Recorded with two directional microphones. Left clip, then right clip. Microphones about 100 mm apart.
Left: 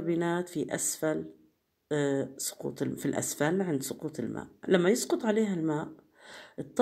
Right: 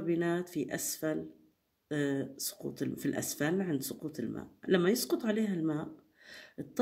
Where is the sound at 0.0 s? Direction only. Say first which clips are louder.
Left 2 dB; 25° left (ahead or behind).